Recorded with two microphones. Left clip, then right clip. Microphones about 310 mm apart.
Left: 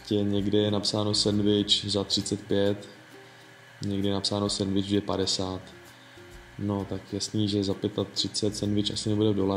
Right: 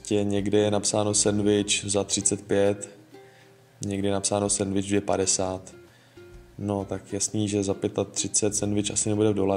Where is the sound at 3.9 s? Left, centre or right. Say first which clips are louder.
Right 3 dB; right.